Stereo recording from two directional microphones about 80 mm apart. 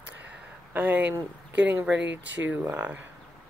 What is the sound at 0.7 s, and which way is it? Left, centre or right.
Speech, right.